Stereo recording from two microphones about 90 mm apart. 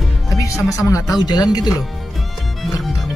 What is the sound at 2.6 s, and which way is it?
Music, centre (ahead or behind).